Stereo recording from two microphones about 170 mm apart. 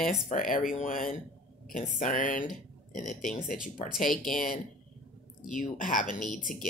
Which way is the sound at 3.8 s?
Centre (ahead or behind).